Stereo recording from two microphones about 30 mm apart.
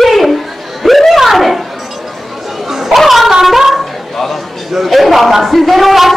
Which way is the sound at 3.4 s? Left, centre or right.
Centre.